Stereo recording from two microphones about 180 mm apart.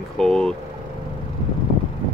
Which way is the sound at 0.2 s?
5° left (ahead or behind).